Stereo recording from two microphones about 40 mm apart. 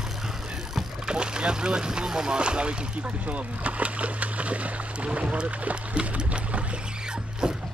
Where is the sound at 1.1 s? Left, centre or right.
Right.